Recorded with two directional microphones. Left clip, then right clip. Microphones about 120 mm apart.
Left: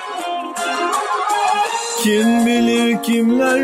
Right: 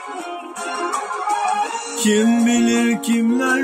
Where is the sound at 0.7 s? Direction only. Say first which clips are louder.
Left 4 dB; 35° left (ahead or behind).